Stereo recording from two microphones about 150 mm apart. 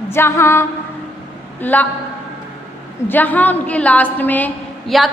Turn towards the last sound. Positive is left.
turn(degrees=10)  # may be behind; listen again after turning